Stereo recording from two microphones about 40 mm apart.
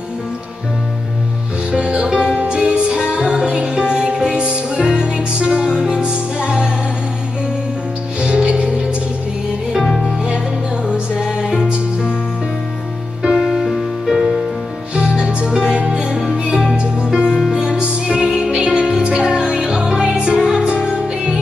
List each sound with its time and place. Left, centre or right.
1.7 s music: right
8.2 s music: right
9.8 s music: centre
13.6 s music: centre
15.0 s music: right